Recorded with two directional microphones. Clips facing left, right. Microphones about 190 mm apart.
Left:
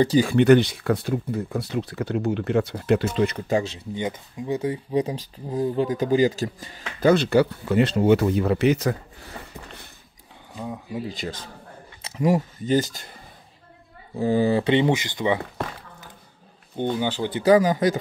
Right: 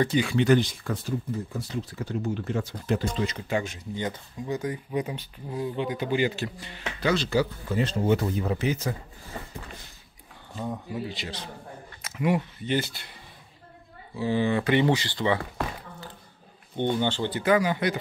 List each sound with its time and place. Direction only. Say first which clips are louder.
0.0 s speech: left 5 dB; 35° left (ahead or behind)
0.3 s speech: left 6 dB; 60° left (ahead or behind)
3.9 s speech: left 3 dB; 20° left (ahead or behind); by 6.7 s 40° left (ahead or behind)
7.0 s speech: left 7 dB; 55° left (ahead or behind); by 8.9 s 70° left (ahead or behind)
10.5 s speech: even; centre (ahead or behind)
11.1 s a man's voice: left 4 dB; 45° left (ahead or behind)
12.0 s speech: left 4 dB; 35° left (ahead or behind)
14.1 s speech: left 5 dB; 45° left (ahead or behind); by 15.6 s 20° left (ahead or behind)
16.9 s speech: left 1 dB; 10° left (ahead or behind)
17.5 s speech: left 6 dB; 40° left (ahead or behind)